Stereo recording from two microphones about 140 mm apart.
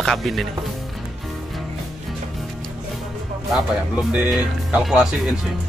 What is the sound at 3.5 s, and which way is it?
Speech, 5° right (ahead or behind).